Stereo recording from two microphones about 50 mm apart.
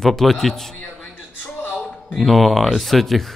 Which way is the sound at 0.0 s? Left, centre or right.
Centre.